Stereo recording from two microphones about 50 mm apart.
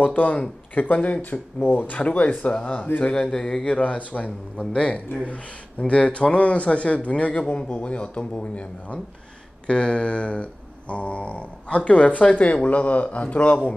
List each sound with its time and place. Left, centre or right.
0.0 s a man's voice: left